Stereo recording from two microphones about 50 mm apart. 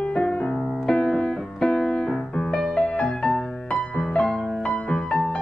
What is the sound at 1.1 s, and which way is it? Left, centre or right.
Music, centre.